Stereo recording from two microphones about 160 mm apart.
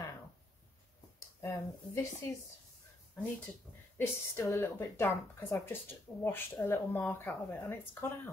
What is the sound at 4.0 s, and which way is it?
Speech, 15° left (ahead or behind).